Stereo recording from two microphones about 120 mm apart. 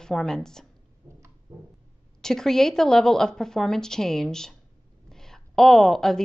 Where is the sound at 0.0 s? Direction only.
5° left (ahead or behind).